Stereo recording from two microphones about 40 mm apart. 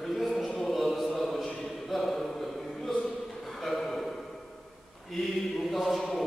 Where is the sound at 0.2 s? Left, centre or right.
Centre.